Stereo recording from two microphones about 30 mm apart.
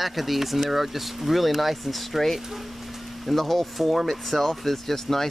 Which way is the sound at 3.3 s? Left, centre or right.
Centre.